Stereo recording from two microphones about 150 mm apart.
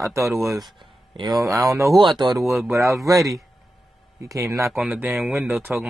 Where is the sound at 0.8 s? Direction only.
30° right (ahead or behind).